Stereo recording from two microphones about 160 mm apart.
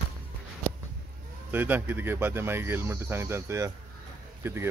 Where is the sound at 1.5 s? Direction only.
10° right (ahead or behind).